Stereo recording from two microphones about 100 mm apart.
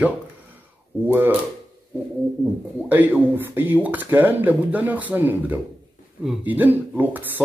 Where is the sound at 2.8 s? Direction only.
20° right (ahead or behind).